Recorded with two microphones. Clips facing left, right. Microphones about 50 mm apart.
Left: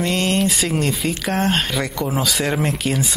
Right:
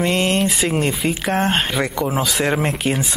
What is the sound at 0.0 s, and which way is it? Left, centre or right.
Speech, centre.